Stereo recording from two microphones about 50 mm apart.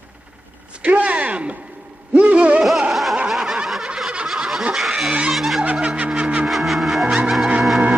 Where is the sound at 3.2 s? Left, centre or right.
Centre.